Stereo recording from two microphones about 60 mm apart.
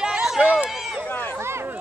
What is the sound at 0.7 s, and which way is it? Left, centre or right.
Run, centre.